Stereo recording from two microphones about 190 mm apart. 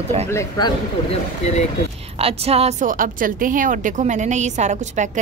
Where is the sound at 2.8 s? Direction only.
45° right (ahead or behind).